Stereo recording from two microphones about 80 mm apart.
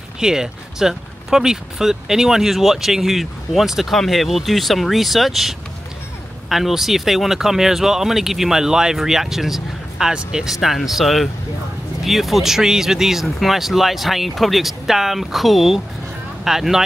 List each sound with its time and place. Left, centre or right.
0.2 s speech: centre